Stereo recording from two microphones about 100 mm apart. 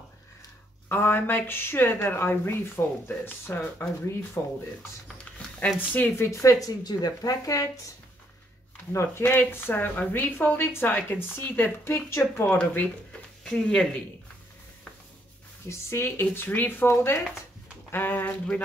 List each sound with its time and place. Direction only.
0.8 s a woman's voice: 20° left (ahead or behind)
5.9 s a woman's voice: 20° left (ahead or behind)
8.9 s speech: 25° left (ahead or behind)
13.4 s speech: 5° left (ahead or behind)
15.7 s speech: 25° left (ahead or behind)